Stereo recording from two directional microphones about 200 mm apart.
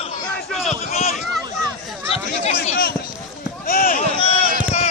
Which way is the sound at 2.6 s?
45° left (ahead or behind).